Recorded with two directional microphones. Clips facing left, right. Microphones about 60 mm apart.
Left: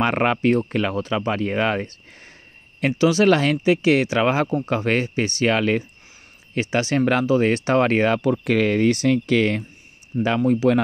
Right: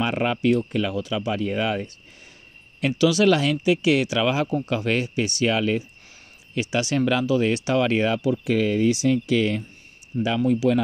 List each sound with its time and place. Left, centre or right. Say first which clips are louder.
0.0 s speech: left 3 dB; left
2.8 s speech: left 2 dB; left
6.5 s speech: left 2 dB; left